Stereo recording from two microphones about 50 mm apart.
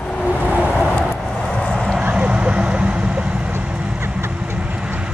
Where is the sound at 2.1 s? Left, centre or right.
Right.